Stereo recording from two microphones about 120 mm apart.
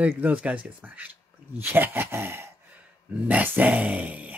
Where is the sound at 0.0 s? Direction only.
10° right (ahead or behind).